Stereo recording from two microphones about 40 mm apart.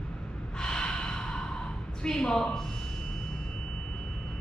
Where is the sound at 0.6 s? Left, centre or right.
Centre.